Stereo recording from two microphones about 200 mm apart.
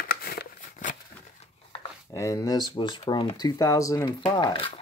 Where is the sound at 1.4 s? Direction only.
25° left (ahead or behind).